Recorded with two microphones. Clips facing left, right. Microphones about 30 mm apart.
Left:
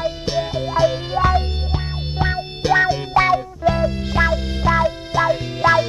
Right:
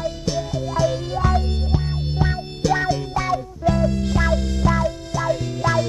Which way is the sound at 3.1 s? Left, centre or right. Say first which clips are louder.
Left 7 dB; left.